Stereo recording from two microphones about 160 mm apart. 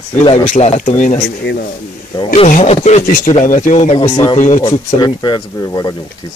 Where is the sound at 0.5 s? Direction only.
45° left (ahead or behind).